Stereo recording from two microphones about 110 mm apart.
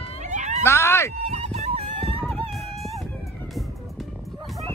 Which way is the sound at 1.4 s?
85° right.